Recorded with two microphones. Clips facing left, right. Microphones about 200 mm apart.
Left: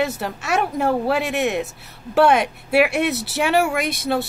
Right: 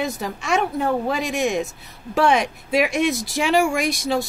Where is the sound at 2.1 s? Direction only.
5° left (ahead or behind).